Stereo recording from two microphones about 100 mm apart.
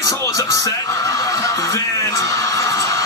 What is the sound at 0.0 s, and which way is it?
Music, 30° left (ahead or behind).